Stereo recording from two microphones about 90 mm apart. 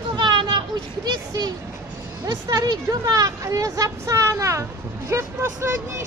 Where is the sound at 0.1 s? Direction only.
55° right (ahead or behind).